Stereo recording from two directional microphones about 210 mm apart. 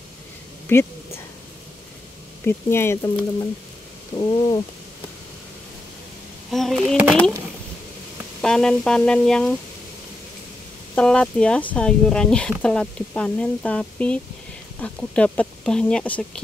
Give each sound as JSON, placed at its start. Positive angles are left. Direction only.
{"t": 0.7, "sound": "a sound", "side_deg": 10}
{"t": 2.4, "sound": "speech", "side_deg": 10}
{"t": 4.1, "sound": "a sound", "side_deg": 20}
{"t": 6.5, "sound": "speech", "side_deg": 0}
{"t": 8.4, "sound": "speech", "side_deg": 5}
{"t": 11.0, "sound": "speech", "side_deg": 5}